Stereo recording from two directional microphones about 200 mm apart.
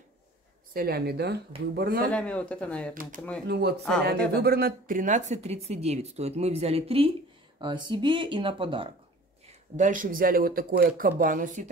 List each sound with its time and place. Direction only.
0.7 s speech: 50° right (ahead or behind)
2.1 s speech: 5° left (ahead or behind)
2.9 s speech: 45° right (ahead or behind); by 8.9 s 25° right (ahead or behind)
9.5 s speech: 40° right (ahead or behind)